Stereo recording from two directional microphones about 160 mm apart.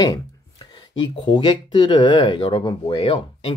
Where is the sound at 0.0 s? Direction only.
25° left (ahead or behind).